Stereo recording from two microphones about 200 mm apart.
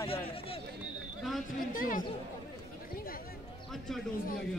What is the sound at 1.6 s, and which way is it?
Speech, 45° left (ahead or behind).